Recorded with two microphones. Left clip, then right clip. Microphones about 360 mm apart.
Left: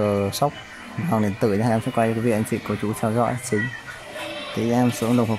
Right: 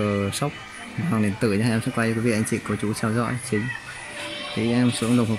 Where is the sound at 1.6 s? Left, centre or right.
Centre.